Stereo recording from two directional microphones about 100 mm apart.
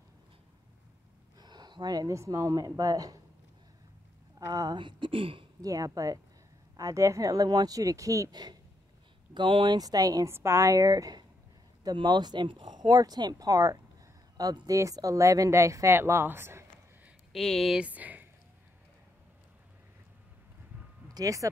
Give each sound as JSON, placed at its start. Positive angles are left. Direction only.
{"t": 1.4, "sound": "speech", "side_deg": -45}
{"t": 4.5, "sound": "speech", "side_deg": -35}
{"t": 4.7, "sound": "speech", "side_deg": -55}
{"t": 5.6, "sound": "speech", "side_deg": -35}
{"t": 9.3, "sound": "speech", "side_deg": -55}
{"t": 9.8, "sound": "speech", "side_deg": -40}
{"t": 17.3, "sound": "speech", "side_deg": 5}
{"t": 17.7, "sound": "speech", "side_deg": -15}
{"t": 21.1, "sound": "speech", "side_deg": -35}